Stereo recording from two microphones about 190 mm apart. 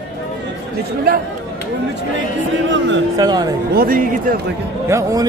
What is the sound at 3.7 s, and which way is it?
Speech, 50° right (ahead or behind).